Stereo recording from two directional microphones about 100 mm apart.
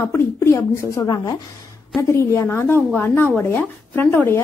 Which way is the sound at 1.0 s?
40° left (ahead or behind).